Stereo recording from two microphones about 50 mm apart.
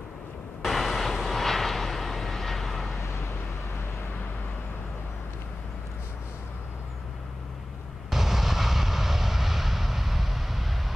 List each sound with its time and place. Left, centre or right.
0.6 s vehicle: centre
8.1 s artillery fire: centre